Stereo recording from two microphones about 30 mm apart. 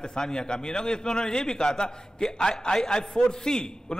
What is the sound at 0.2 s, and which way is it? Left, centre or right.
A man's voice, left.